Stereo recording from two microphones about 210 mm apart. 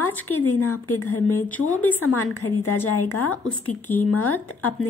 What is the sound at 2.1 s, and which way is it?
Speech, 90° left.